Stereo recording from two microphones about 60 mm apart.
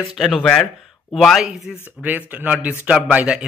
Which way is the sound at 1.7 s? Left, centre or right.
Centre.